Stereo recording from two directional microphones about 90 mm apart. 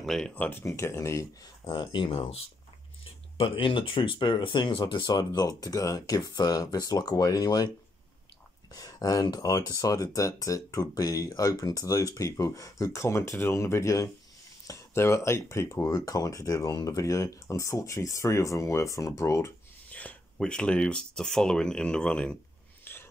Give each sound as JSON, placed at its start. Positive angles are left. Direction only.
{"t": 0.0, "sound": "speech", "side_deg": 5}
{"t": 0.3, "sound": "speech", "side_deg": 20}
{"t": 1.4, "sound": "speech", "side_deg": 55}
{"t": 3.3, "sound": "speech", "side_deg": 80}
{"t": 8.7, "sound": "speech", "side_deg": 40}
{"t": 19.9, "sound": "a sound", "side_deg": 15}
{"t": 20.3, "sound": "speech", "side_deg": 10}
{"t": 22.9, "sound": "a sound", "side_deg": 25}